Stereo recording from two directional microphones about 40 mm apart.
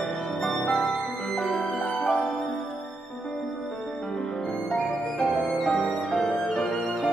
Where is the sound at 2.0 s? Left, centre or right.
Left.